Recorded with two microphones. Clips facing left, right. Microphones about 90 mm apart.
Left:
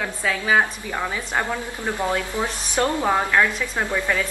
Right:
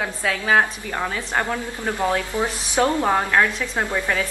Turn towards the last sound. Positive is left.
turn(degrees=-15)  # may be behind; listen again after turning